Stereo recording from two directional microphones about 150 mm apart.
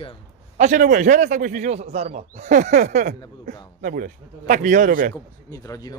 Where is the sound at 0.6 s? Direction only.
60° right (ahead or behind).